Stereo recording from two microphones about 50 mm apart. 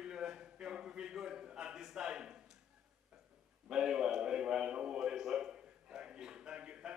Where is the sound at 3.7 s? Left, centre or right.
Centre.